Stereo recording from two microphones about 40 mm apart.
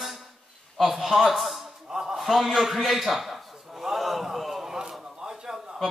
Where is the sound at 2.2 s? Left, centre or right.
Centre.